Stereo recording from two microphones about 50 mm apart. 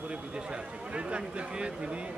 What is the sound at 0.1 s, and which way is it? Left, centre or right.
A man's voice, right.